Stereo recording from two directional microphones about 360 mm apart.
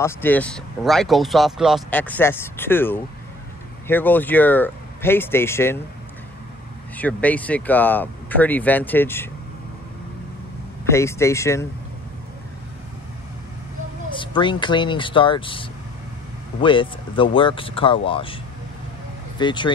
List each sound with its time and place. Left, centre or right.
0.0 s speech: centre
7.0 s speech: centre
10.9 s speech: centre
14.1 s speech: centre
16.6 s speech: centre